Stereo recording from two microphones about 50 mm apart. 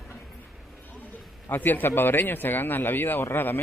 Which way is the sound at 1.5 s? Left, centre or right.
Left.